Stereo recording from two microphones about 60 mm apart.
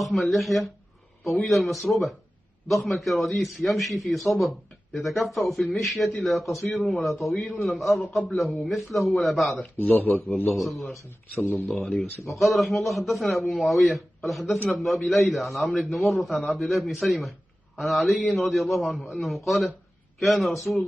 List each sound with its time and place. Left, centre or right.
0.0 s a man's voice: centre
9.6 s speech: left
10.5 s a man's voice: centre
11.3 s speech: left
11.6 s a man's voice: centre